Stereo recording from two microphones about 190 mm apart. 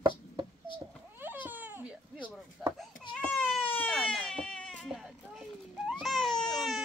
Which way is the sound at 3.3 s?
5° left (ahead or behind).